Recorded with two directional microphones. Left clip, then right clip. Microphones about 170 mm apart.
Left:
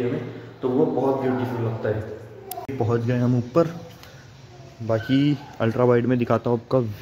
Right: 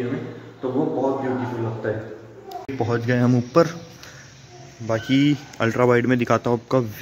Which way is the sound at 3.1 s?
20° right (ahead or behind).